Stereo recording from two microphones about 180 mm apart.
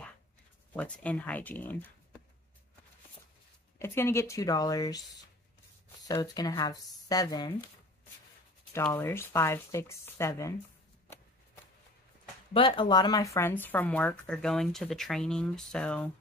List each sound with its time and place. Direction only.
0.7 s speech: 5° left (ahead or behind)
3.8 s speech: 15° left (ahead or behind)
6.0 s speech: 20° left (ahead or behind)
8.9 s speech: 15° left (ahead or behind)
12.5 s speech: 30° left (ahead or behind); by 16.1 s 5° left (ahead or behind)